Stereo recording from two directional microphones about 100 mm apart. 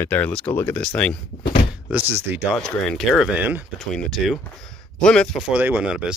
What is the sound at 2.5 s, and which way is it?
Speech, centre (ahead or behind).